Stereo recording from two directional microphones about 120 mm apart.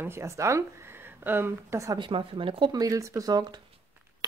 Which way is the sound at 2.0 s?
45° right (ahead or behind).